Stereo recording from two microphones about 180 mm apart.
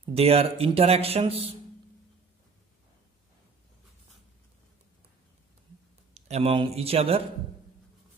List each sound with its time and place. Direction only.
0.0 s speech: 35° right (ahead or behind)
6.1 s speech: 35° right (ahead or behind)